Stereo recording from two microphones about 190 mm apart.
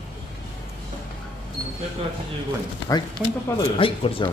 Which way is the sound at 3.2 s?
5° right (ahead or behind).